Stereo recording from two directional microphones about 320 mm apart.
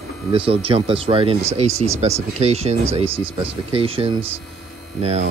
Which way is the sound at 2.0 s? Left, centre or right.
Centre.